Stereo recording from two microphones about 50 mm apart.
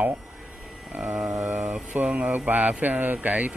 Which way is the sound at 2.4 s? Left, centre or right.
Right.